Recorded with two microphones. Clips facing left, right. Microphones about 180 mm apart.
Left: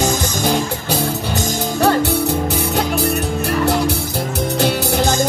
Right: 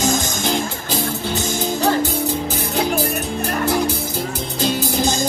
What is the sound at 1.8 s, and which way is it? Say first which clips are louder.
Music: left 5 dB; 70° left (ahead or behind).